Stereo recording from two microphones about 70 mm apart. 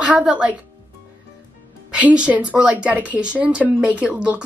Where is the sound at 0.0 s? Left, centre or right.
Centre.